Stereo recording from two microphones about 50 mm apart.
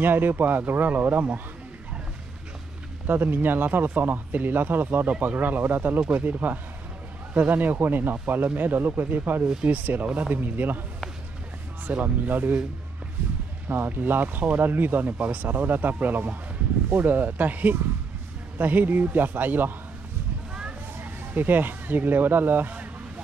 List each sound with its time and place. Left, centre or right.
0.0 s speech: right
3.1 s speech: right
5.9 s speech: right
11.9 s speech: right
13.7 s speech: right
21.0 s speech: right